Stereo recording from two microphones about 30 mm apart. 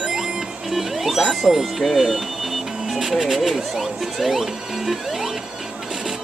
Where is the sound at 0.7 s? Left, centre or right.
Centre.